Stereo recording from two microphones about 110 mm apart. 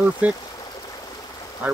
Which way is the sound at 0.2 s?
15° right (ahead or behind).